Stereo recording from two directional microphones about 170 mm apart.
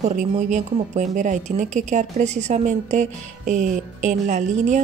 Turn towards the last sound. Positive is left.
turn(degrees=-45)  # may be behind; listen again after turning